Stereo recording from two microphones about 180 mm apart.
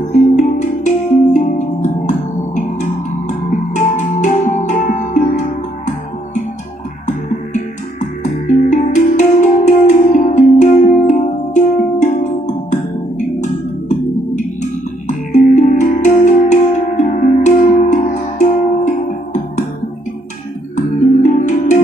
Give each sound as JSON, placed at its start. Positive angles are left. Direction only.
{"t": 0.4, "sound": "music", "side_deg": 40}
{"t": 7.1, "sound": "music", "side_deg": 40}
{"t": 13.4, "sound": "music", "side_deg": 40}
{"t": 20.7, "sound": "music", "side_deg": 40}